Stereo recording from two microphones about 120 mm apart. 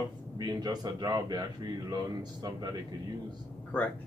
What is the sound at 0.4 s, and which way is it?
A man's voice, 35° right (ahead or behind).